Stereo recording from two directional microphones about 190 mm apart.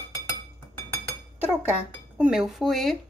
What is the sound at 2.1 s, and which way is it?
Speech, 5° right (ahead or behind).